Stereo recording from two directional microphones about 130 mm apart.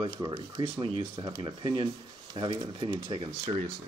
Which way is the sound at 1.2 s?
40° right (ahead or behind).